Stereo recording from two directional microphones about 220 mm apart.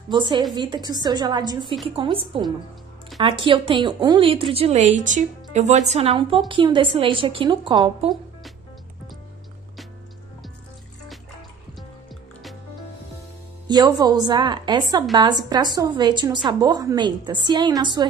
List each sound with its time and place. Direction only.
0.6 s a woman's voice: 20° right (ahead or behind)
13.7 s a woman's voice: 20° right (ahead or behind)